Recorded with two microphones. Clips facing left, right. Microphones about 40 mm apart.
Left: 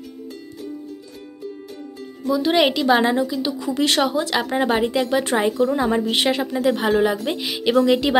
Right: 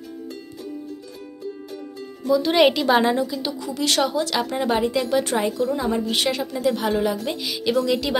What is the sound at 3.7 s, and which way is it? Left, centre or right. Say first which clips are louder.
Speech: left 2 dB; left.